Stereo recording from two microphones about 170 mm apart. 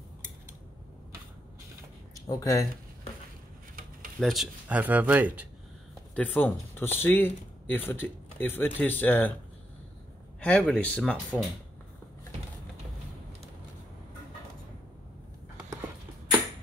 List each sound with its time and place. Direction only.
2.2 s speech: 20° left (ahead or behind)
4.2 s speech: centre (ahead or behind)
6.1 s speech: 10° left (ahead or behind)
10.4 s speech: 5° left (ahead or behind)